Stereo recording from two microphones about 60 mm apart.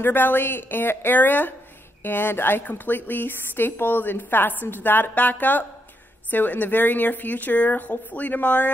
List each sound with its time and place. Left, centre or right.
0.0 s speech: left